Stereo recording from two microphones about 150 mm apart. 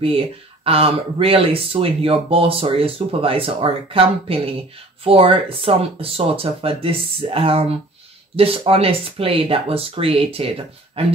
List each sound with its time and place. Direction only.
0.0 s speech: 40° right (ahead or behind)